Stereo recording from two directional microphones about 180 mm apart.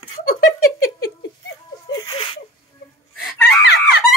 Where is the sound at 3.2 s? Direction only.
60° left (ahead or behind).